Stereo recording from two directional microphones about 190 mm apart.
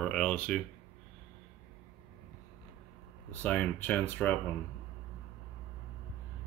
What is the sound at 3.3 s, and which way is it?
Speech, 5° left (ahead or behind).